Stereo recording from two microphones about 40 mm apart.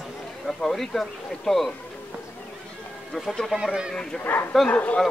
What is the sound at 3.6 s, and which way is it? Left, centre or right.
Speech, centre.